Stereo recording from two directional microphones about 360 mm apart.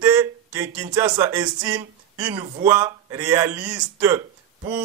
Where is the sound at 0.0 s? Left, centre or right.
Centre.